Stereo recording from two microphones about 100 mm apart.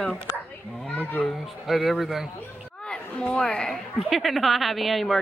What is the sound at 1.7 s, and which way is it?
Speech, centre (ahead or behind).